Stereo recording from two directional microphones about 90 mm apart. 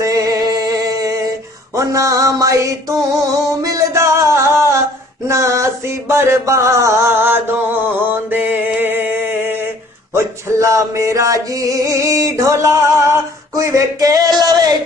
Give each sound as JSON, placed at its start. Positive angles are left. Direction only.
{"t": 0.0, "sound": "music", "side_deg": -40}